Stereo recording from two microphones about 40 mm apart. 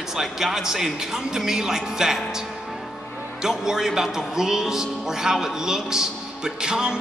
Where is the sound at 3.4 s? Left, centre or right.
Centre.